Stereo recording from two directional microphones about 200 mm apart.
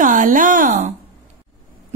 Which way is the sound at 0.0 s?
40° right (ahead or behind).